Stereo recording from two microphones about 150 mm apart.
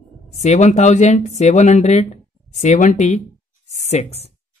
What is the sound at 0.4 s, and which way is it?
Speech, 50° left (ahead or behind).